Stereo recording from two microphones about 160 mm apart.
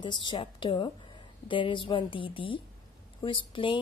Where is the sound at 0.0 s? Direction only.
30° left (ahead or behind).